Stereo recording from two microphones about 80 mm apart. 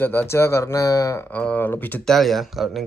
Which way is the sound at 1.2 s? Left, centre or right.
Centre.